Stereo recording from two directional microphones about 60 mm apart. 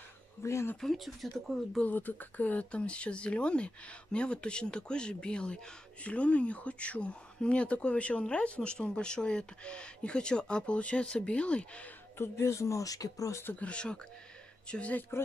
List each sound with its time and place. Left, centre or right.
0.4 s speech: left
0.7 s speech: centre
1.8 s speech: left
12.2 s speech: left
13.3 s speech: left
13.6 s speech: centre